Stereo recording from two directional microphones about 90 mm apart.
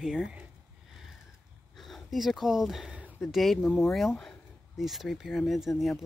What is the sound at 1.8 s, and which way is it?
Speech, centre (ahead or behind).